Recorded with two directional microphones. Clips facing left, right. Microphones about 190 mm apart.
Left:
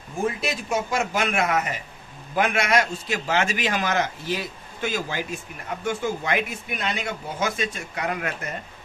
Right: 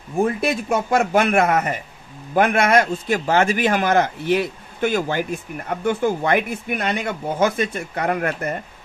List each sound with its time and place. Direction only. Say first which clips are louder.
0.2 s a man's voice: right 6 dB; 55° right (ahead or behind)